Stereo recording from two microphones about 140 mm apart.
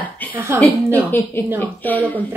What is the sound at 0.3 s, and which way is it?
Speech, 20° right (ahead or behind).